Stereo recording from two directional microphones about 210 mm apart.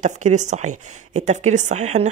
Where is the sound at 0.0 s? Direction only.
35° right (ahead or behind).